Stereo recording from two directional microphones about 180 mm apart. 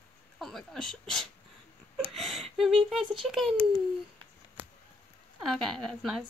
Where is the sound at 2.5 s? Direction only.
Centre (ahead or behind).